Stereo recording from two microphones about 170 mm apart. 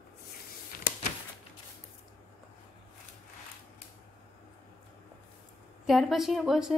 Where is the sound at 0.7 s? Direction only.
60° left (ahead or behind).